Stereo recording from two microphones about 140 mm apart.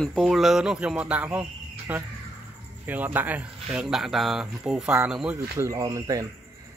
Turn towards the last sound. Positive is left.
turn(degrees=-25)  # may be behind; listen again after turning